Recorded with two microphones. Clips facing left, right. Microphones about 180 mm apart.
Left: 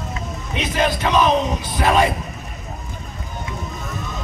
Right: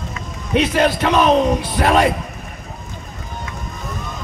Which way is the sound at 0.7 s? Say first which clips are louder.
Even; 60° right (ahead or behind).